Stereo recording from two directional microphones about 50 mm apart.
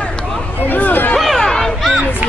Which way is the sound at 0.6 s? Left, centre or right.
Left.